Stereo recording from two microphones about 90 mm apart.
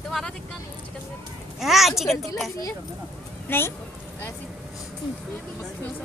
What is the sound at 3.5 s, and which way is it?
Speech, 25° left (ahead or behind).